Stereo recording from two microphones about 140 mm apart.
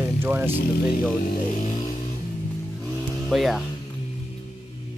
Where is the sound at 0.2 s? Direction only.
15° right (ahead or behind).